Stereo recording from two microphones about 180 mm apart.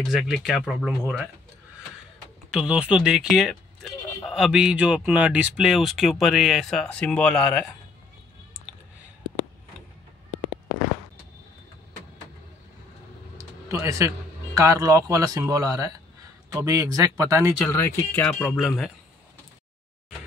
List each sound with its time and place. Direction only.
0.0 s speech: 5° right (ahead or behind)
2.5 s speech: 5° right (ahead or behind)
13.4 s a sound: 15° right (ahead or behind)
14.6 s speech: 20° right (ahead or behind)
17.6 s speech: 10° left (ahead or behind)